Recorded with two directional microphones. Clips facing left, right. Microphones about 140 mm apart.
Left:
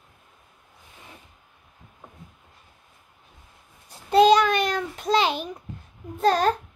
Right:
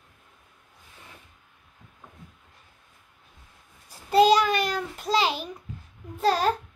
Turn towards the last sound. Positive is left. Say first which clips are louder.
# left 3 dB
turn(degrees=45)  # may be behind; listen again after turning